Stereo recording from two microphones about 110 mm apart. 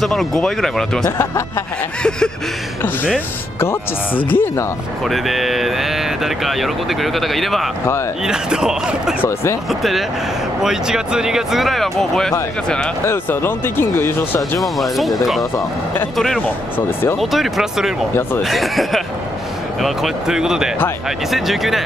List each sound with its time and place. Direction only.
0.0 s speech: centre (ahead or behind)
2.0 s speech: 5° left (ahead or behind)
3.5 s speech: 20° left (ahead or behind)
5.0 s speech: centre (ahead or behind)
9.2 s speech: 25° left (ahead or behind)
9.7 s speech: centre (ahead or behind)
13.0 s speech: 20° left (ahead or behind)
14.6 s speech: centre (ahead or behind)
16.3 s speech: 15° left (ahead or behind)
17.2 s speech: centre (ahead or behind)